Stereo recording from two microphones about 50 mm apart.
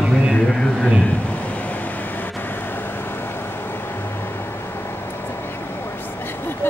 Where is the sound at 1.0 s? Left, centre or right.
Left.